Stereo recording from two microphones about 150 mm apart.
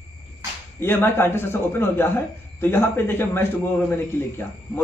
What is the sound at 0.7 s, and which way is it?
A man's voice, 15° left (ahead or behind).